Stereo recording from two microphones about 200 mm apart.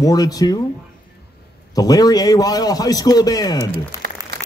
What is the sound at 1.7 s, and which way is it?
A man's voice, 20° left (ahead or behind).